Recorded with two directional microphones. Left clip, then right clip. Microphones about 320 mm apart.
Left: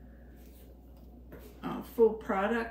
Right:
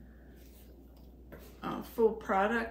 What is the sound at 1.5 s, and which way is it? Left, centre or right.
Speech, centre.